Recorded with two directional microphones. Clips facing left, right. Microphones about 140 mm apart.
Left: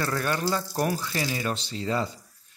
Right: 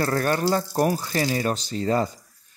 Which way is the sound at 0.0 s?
40° right (ahead or behind).